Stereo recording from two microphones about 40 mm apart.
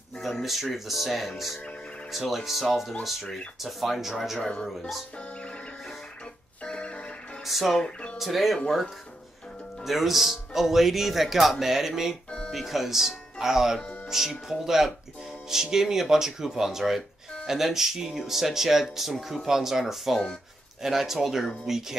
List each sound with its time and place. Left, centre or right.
0.2 s speech: centre
6.6 s music: left
7.4 s speech: centre
9.8 s speech: centre